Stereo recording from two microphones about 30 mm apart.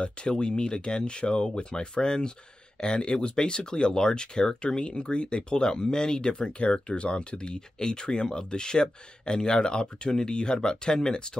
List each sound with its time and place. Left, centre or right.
0.0 s speech: left